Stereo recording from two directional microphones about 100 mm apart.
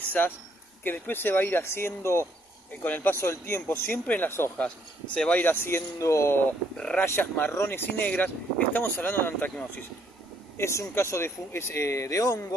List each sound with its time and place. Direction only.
0.0 s a sound: 15° left (ahead or behind)
0.8 s speech: 20° left (ahead or behind)
6.8 s speech: 10° left (ahead or behind)
7.2 s speech: 20° left (ahead or behind)
10.6 s speech: 30° left (ahead or behind)